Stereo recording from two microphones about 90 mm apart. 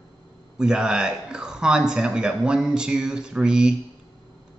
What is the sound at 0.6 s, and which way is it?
A man's voice, 10° right (ahead or behind).